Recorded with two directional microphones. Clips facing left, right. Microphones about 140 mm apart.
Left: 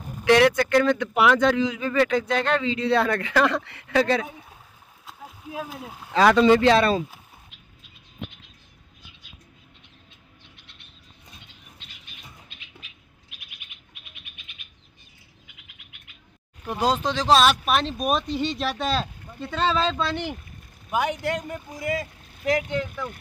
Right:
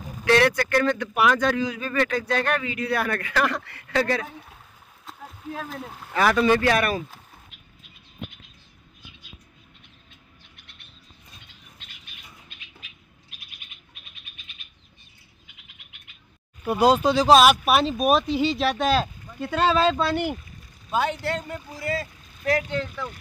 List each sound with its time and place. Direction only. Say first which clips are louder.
0.2 s speech: left 2 dB; 20° left (ahead or behind)
5.0 s a sound: right 3 dB; 10° left (ahead or behind)
6.1 s speech: left 3 dB; 20° left (ahead or behind)
16.6 s speech: right 5 dB; 10° right (ahead or behind)
20.9 s speech: even; 15° left (ahead or behind)